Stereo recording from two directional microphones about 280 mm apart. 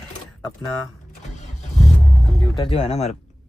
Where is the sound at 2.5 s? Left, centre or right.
Centre.